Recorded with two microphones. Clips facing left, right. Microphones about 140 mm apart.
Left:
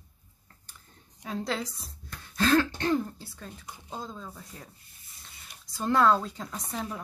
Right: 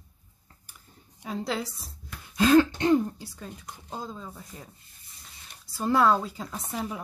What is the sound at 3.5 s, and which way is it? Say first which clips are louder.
Speech: left 1 dB; 5° left (ahead or behind).